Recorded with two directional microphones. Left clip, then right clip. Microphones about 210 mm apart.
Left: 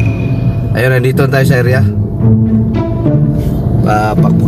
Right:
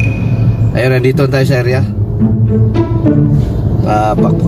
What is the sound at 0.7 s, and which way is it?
Speech, 15° left (ahead or behind).